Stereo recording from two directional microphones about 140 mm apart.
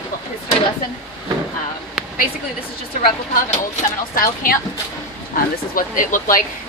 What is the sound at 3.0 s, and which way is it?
Speech, 70° left (ahead or behind).